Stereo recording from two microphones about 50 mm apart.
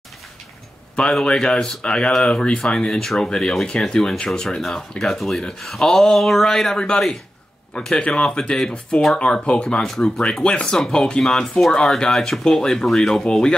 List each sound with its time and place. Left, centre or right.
1.2 s speech: centre